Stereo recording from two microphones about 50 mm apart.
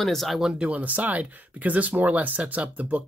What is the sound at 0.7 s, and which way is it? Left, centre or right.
Speech, right.